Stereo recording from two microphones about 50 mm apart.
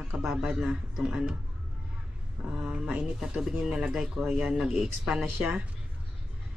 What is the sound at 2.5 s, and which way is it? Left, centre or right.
Speech, centre.